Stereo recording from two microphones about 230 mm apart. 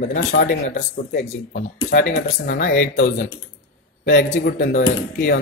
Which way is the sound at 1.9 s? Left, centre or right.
Left.